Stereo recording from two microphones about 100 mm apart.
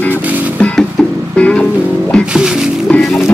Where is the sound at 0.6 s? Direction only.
5° left (ahead or behind).